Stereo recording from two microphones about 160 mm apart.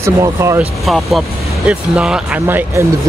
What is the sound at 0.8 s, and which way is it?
Speech, centre (ahead or behind).